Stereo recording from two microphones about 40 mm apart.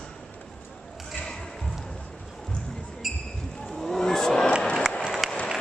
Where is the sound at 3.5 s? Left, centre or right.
Centre.